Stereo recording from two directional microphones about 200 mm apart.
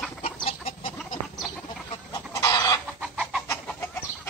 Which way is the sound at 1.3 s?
Centre (ahead or behind).